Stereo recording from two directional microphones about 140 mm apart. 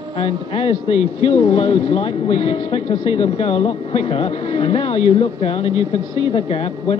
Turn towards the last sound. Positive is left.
turn(degrees=40)  # may be behind; listen again after turning